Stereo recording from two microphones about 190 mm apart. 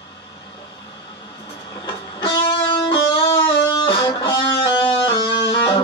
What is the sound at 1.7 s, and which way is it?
Music, 20° left (ahead or behind).